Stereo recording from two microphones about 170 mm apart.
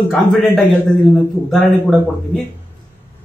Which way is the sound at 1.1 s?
Centre (ahead or behind).